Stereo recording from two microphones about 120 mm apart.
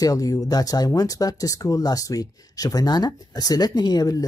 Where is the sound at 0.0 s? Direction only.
30° left (ahead or behind).